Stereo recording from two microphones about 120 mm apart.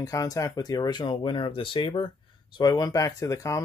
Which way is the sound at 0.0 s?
30° left (ahead or behind).